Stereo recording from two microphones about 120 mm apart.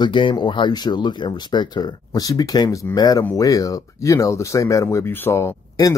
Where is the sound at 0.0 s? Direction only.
40° left (ahead or behind).